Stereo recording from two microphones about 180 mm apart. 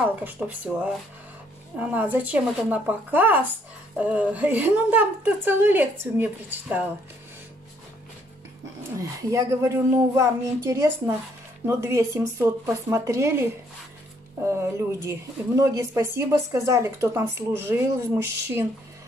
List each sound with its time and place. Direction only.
0.1 s speech: 10° right (ahead or behind)
1.8 s speech: 10° right (ahead or behind)
8.9 s speech: 15° right (ahead or behind)